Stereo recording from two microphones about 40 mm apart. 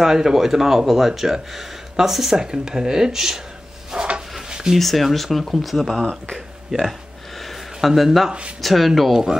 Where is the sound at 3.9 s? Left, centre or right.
Right.